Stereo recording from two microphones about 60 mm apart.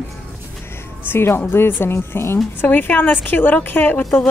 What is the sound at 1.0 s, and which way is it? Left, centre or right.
A woman's voice, left.